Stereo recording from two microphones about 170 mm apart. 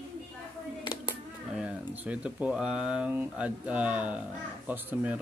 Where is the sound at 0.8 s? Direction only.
25° left (ahead or behind).